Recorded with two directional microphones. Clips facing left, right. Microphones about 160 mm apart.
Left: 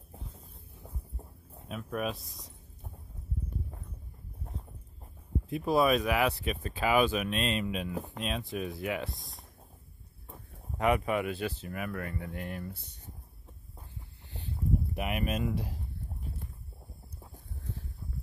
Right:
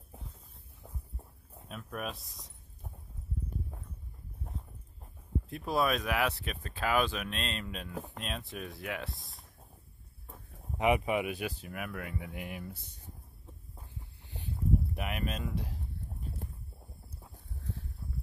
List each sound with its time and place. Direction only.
1.7 s speech: centre (ahead or behind)
5.5 s speech: centre (ahead or behind)
10.2 s a sound: centre (ahead or behind)
10.8 s speech: 15° right (ahead or behind)
12.7 s speech: 65° left (ahead or behind)
15.0 s speech: 5° left (ahead or behind)